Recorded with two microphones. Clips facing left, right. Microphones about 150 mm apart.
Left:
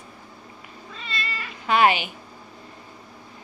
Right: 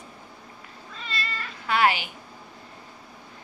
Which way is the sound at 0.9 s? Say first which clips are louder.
Left 1 dB; 5° left (ahead or behind).